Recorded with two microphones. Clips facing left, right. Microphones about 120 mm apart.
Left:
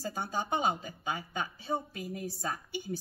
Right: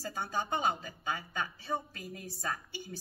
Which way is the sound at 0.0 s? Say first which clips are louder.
Left 1 dB; 20° left (ahead or behind).